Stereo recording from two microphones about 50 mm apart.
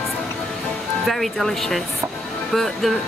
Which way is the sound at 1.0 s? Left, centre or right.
Centre.